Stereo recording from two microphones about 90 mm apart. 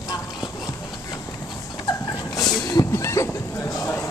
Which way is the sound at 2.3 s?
45° left (ahead or behind).